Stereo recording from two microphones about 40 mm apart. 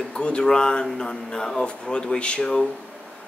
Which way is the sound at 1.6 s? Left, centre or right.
Left.